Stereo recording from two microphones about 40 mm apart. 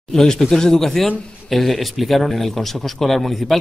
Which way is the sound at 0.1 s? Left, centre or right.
Centre.